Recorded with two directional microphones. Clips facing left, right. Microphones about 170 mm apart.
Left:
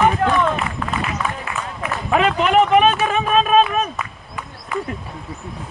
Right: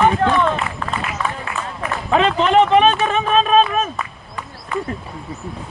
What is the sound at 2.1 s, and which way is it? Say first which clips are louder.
Speech: right 1 dB; 30° right (ahead or behind).